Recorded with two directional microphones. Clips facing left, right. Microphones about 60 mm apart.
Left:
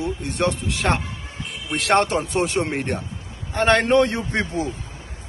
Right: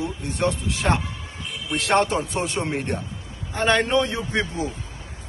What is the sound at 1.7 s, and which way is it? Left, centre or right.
A man's voice, left.